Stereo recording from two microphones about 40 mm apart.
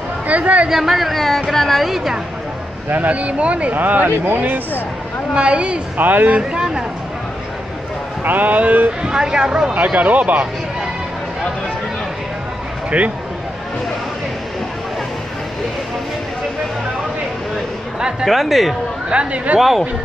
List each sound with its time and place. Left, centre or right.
0.3 s a woman's voice: right
0.7 s speech: centre
3.1 s speech: right
3.7 s a man's voice: right
5.3 s speech: right
5.9 s a man's voice: right
8.2 s a man's voice: right
9.0 s speech: centre
9.9 s speech: right
18.2 s speech: centre
19.0 s speech: right